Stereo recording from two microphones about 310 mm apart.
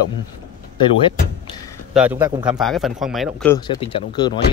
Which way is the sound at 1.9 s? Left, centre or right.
Centre.